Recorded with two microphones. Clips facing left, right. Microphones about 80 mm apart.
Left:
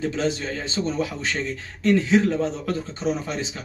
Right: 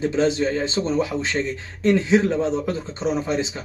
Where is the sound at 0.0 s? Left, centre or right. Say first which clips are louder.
Right 5 dB; right.